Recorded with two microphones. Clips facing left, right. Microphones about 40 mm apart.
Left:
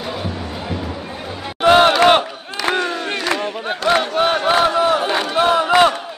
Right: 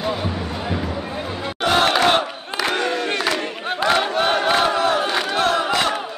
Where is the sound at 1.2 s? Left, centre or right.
Centre.